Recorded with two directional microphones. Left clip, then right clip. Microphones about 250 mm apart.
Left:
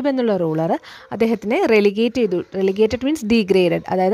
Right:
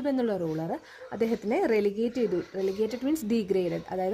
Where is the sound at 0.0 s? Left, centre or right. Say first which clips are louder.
Left 10 dB; left.